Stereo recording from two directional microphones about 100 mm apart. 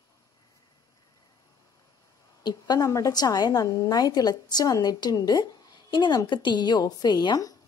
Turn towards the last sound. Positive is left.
turn(degrees=45)  # may be behind; listen again after turning